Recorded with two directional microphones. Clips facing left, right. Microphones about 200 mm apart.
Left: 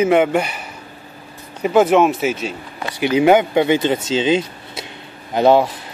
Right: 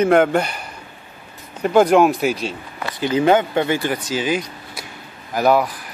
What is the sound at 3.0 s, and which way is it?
Speech, 15° left (ahead or behind).